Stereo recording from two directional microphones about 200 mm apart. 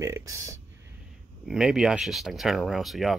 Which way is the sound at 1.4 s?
Centre (ahead or behind).